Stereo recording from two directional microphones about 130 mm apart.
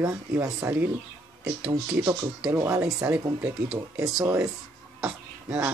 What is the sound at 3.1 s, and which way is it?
Speech, 10° right (ahead or behind).